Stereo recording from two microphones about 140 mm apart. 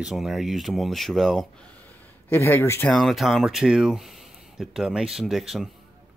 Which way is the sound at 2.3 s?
20° left (ahead or behind).